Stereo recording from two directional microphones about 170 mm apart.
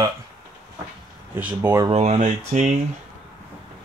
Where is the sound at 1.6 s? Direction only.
25° right (ahead or behind).